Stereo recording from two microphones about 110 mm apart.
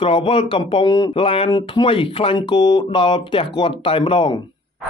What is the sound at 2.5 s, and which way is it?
Speech, 40° left (ahead or behind).